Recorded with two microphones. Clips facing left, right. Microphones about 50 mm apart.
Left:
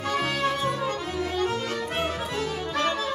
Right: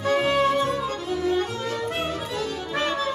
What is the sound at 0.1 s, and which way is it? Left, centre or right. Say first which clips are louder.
Music: right 6 dB; right.